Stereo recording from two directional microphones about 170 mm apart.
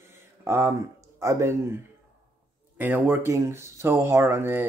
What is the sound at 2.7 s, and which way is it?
Speech, 10° right (ahead or behind).